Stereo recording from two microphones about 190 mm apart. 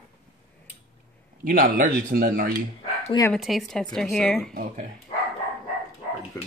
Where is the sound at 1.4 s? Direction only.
45° right (ahead or behind).